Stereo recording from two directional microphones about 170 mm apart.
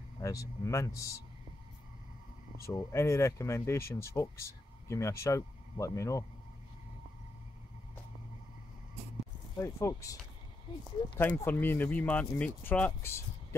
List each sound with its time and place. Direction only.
0.2 s speech: 20° left (ahead or behind)
2.6 s speech: 15° left (ahead or behind)
9.6 s speech: 15° left (ahead or behind)
11.4 s speech: 10° left (ahead or behind)